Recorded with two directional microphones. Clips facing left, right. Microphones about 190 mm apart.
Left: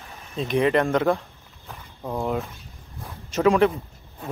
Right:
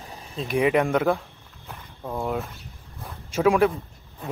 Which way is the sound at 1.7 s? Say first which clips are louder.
Left 2 dB; centre (ahead or behind).